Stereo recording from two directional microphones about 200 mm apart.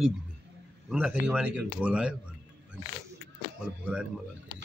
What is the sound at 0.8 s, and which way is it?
A man's voice, 5° right (ahead or behind).